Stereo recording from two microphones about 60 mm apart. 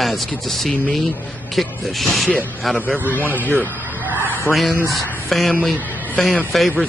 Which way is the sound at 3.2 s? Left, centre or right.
Right.